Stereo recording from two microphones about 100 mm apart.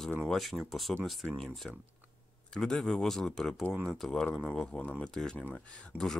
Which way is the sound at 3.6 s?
25° right (ahead or behind).